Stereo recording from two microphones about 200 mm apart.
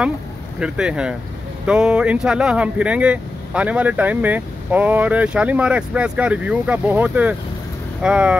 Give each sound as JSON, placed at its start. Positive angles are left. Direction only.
{"t": 0.6, "sound": "speech", "side_deg": -5}